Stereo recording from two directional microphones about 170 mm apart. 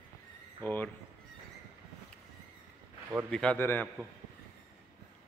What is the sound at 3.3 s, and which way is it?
Speech, 5° left (ahead or behind).